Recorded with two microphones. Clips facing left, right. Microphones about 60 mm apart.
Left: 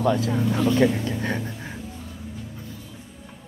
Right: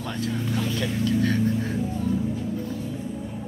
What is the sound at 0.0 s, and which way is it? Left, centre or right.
Speech, centre.